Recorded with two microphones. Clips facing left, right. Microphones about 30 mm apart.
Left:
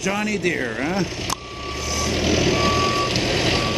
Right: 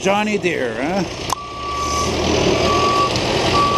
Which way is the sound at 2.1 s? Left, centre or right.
Centre.